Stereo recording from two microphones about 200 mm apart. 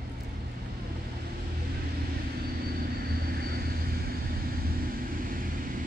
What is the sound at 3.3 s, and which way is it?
Vehicle, 50° right (ahead or behind).